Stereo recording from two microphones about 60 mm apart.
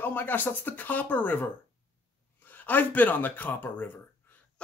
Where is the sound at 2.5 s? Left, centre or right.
Left.